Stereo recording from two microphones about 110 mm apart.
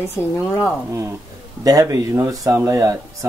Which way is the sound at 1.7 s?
35° right (ahead or behind).